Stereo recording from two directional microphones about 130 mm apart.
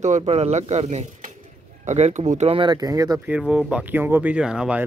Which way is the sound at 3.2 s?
5° right (ahead or behind).